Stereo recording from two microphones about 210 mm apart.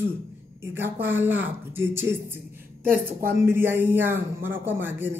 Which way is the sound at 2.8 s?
45° right (ahead or behind).